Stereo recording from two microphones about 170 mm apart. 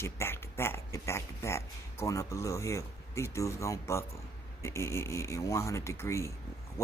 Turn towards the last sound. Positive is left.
turn(degrees=15)  # may be behind; listen again after turning